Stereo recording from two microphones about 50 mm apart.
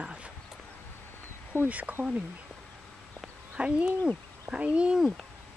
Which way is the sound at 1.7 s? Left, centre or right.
Right.